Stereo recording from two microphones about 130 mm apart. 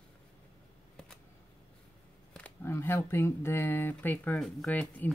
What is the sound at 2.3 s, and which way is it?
Speech, 15° left (ahead or behind).